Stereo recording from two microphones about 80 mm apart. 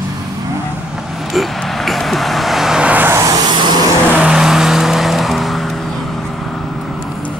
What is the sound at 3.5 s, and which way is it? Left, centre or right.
Vehicle, right.